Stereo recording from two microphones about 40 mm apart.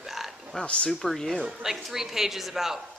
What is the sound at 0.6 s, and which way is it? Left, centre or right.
Speech, left.